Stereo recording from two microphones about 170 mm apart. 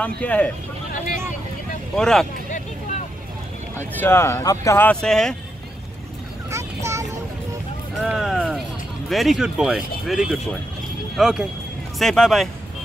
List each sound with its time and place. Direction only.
0.0 s speech: 10° left (ahead or behind)
2.0 s speech: 5° left (ahead or behind)
3.7 s speech: 15° left (ahead or behind)
6.5 s vehicle: 15° right (ahead or behind)
8.0 s speech: centre (ahead or behind)